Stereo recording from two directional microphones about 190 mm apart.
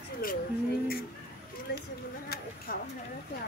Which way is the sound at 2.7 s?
50° left (ahead or behind).